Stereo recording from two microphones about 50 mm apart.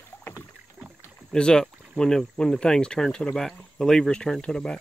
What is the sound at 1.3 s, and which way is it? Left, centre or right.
Speech, centre.